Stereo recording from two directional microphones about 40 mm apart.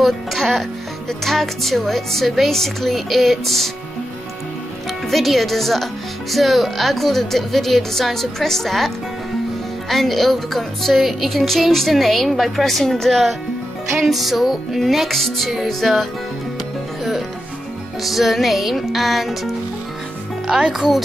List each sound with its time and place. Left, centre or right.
0.0 s music: centre
1.2 s speech: centre
5.0 s music: centre
6.3 s speech: centre
9.8 s music: centre
18.0 s music: centre
20.7 s speech: centre